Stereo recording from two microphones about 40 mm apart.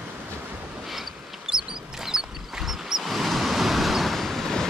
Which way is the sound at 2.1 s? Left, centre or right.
Centre.